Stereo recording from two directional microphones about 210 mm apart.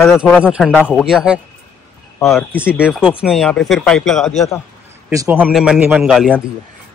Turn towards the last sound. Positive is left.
turn(degrees=0)  # may be behind; listen again after turning